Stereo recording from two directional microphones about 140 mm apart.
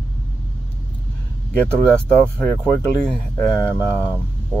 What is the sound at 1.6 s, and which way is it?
Speech, 10° left (ahead or behind).